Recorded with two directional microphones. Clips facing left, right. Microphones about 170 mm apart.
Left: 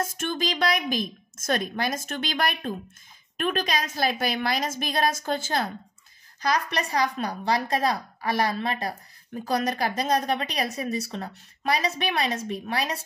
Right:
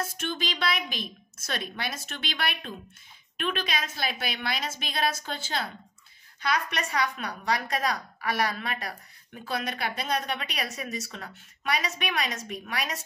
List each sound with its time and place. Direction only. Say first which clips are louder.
0.0 s a woman's voice: left 4 dB; 45° left (ahead or behind)
6.4 s a woman's voice: left 3 dB; 35° left (ahead or behind)